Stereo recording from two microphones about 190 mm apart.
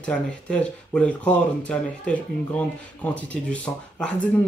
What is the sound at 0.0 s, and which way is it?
Speech, 5° left (ahead or behind).